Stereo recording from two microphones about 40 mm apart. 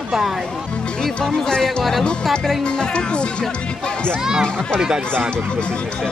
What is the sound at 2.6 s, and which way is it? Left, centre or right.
Speech, left.